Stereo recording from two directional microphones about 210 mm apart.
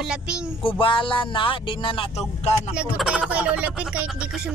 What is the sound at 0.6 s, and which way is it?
Speech, 25° left (ahead or behind).